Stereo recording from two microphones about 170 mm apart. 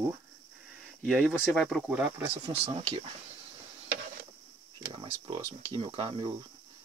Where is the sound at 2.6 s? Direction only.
35° right (ahead or behind).